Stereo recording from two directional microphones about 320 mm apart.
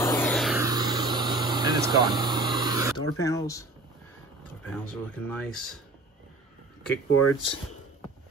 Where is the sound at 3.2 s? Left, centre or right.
Centre.